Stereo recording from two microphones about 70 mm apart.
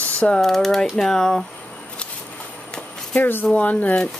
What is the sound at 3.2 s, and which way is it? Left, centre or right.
Speech, left.